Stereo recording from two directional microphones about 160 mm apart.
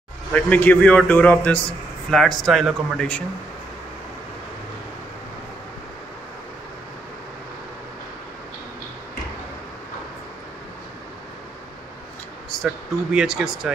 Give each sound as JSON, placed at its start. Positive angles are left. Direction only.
{"t": 0.3, "sound": "a man's voice", "side_deg": 10}
{"t": 12.4, "sound": "speech", "side_deg": -5}